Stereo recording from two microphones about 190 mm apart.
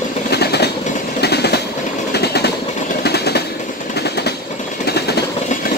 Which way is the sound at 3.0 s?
60° left (ahead or behind).